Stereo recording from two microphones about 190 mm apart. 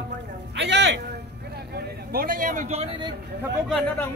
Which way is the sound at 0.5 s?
65° right (ahead or behind).